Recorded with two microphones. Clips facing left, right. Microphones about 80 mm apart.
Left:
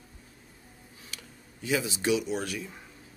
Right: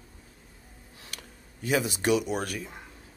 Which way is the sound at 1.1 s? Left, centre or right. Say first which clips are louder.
Right 1 dB; right.